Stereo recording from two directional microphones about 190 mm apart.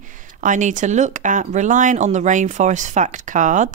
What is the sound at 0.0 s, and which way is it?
Speech, 40° right (ahead or behind).